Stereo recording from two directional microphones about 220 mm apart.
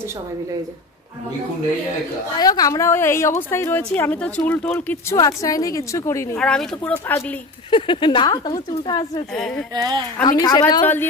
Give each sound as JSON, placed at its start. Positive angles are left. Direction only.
{"t": 2.3, "sound": "a woman's voice", "side_deg": 15}
{"t": 7.7, "sound": "speech", "side_deg": 20}
{"t": 9.3, "sound": "speech", "side_deg": 5}
{"t": 9.8, "sound": "speech", "side_deg": -15}
{"t": 10.2, "sound": "a woman's voice", "side_deg": 20}